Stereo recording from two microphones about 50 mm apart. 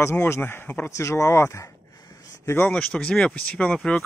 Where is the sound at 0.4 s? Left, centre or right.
Left.